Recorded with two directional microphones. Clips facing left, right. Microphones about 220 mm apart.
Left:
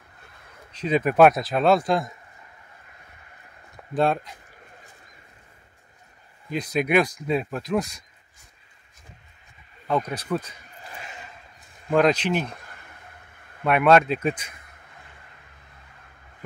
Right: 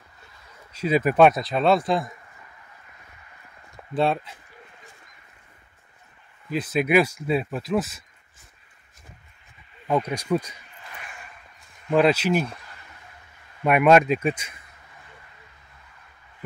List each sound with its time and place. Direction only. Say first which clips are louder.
0.2 s a sound: left 1 dB; 55° left (ahead or behind)
0.7 s speech: even; 5° right (ahead or behind)
3.9 s speech: even; centre (ahead or behind)
6.5 s speech: right 1 dB; 5° right (ahead or behind)
9.8 s speech: right 2 dB; 10° right (ahead or behind)
10.8 s a sound: left 3 dB; 30° left (ahead or behind)
11.9 s speech: right 1 dB; 5° right (ahead or behind)
12.5 s a sound: left 1 dB; 50° left (ahead or behind)
13.7 s speech: right 1 dB; 10° right (ahead or behind)